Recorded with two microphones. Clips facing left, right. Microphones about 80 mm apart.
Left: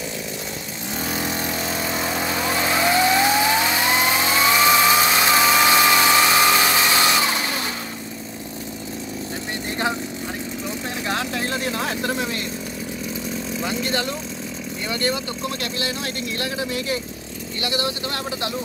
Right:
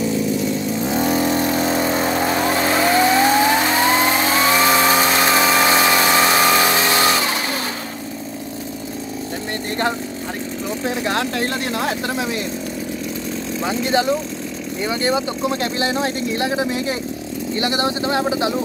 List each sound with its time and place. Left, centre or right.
1.1 s vehicle: right
3.7 s vehicle: right
4.6 s chainsaw: right
5.3 s engine: centre
5.7 s vehicle: right
11.1 s vehicle: centre
13.7 s speech: centre
15.6 s speech: right